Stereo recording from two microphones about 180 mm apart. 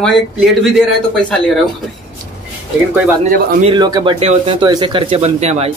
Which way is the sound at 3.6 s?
25° right (ahead or behind).